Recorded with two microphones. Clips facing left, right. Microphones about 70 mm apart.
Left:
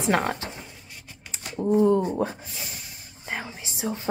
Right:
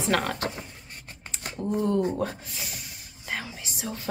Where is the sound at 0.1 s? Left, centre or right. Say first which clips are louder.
Left 2 dB; left.